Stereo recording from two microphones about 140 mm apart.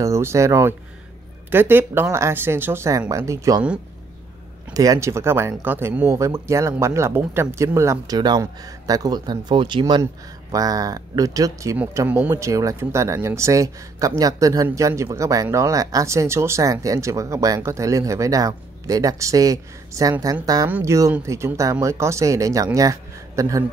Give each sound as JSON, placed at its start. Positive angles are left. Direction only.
{"t": 0.0, "sound": "speech", "side_deg": -20}
{"t": 4.7, "sound": "speech", "side_deg": -25}